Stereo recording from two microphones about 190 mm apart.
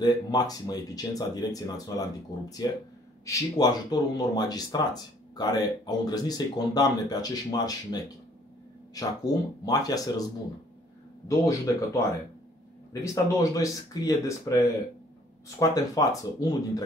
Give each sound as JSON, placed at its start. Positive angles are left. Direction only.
{"t": 0.0, "sound": "speech", "side_deg": 20}
{"t": 11.2, "sound": "speech", "side_deg": 15}
{"t": 13.0, "sound": "speech", "side_deg": 15}